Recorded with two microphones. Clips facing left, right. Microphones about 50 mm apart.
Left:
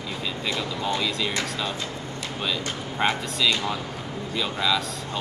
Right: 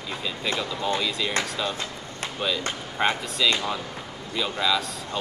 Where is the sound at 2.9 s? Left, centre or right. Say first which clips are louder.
Even; centre.